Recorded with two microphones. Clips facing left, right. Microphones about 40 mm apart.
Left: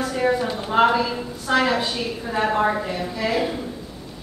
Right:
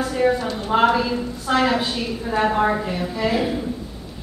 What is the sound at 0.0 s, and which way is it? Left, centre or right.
A woman's voice, centre.